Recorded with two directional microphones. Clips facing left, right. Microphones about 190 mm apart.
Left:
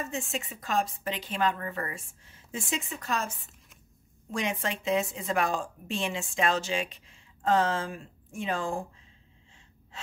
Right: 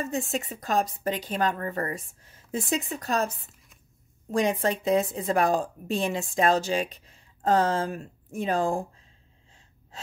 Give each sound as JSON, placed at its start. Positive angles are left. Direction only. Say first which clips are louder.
{"t": 0.0, "sound": "a woman's voice", "louder": "right 5 dB", "side_deg": -40}